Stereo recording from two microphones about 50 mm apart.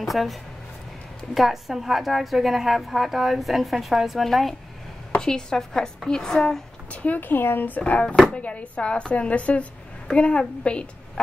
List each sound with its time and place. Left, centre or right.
0.0 s a woman's voice: centre
5.1 s a woman's voice: centre
6.9 s a sound: left
7.2 s speech: left